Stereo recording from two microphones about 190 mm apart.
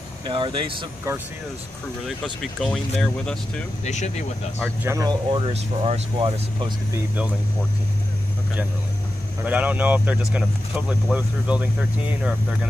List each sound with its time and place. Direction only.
0.2 s speech: 25° right (ahead or behind)
2.0 s speech: centre (ahead or behind)
3.8 s speech: 40° left (ahead or behind)
4.8 s speech: 20° right (ahead or behind)
5.5 s speech: 35° right (ahead or behind)
9.5 s speech: 10° right (ahead or behind)